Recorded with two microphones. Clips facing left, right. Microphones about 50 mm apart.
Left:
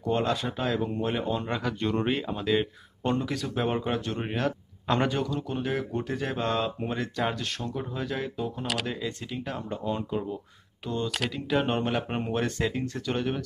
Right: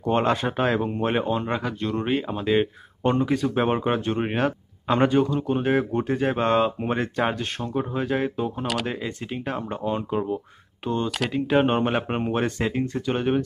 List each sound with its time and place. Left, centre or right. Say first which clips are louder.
0.0 s speech: right 5 dB; right
1.4 s speech: right 3 dB; centre
1.8 s speech: right 1 dB; centre
2.1 s speech: right 5 dB; centre
2.5 s speech: right 5 dB; right
4.8 s a man's voice: right 6 dB; centre
5.2 s speech: right 7 dB; right
11.2 s speech: right 7 dB; right